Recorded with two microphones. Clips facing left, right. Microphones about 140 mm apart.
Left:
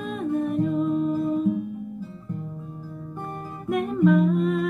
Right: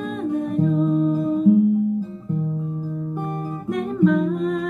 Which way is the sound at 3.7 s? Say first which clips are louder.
Right 1 dB; 5° left (ahead or behind).